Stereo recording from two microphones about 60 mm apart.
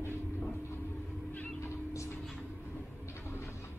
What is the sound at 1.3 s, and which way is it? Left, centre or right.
Vehicle, left.